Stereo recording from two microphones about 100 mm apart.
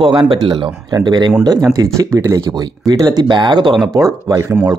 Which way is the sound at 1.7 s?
35° right (ahead or behind).